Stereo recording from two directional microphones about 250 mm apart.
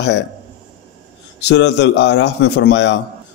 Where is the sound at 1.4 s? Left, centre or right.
Left.